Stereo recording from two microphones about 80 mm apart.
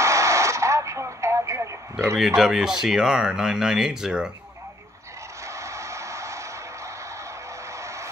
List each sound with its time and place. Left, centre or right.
0.0 s radio: right
2.1 s speech: centre
5.4 s music: right
7.7 s vehicle: right